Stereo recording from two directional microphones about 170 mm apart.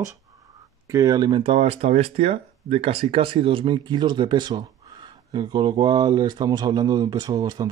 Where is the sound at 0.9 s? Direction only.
20° right (ahead or behind).